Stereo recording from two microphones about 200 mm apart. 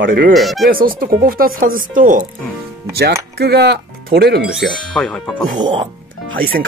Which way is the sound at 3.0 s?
50° right (ahead or behind).